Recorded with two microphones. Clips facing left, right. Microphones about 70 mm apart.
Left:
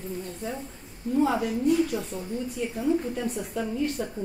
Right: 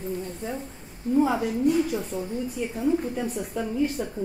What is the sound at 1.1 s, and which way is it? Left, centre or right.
A woman's voice, centre.